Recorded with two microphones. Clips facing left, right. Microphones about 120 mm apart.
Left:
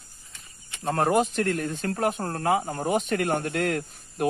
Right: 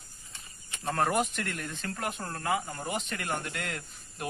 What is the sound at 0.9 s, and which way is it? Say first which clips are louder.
Speech: left 5 dB; 25° left (ahead or behind).